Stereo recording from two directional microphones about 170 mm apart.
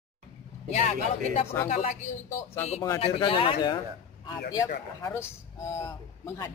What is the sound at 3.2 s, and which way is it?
Speech, 30° left (ahead or behind).